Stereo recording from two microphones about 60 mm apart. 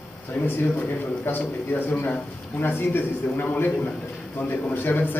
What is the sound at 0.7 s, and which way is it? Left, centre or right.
A man's voice, left.